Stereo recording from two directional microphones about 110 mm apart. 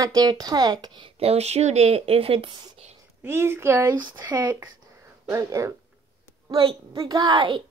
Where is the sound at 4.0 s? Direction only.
40° right (ahead or behind).